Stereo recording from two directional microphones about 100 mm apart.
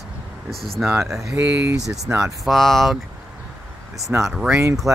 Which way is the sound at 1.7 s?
35° right (ahead or behind).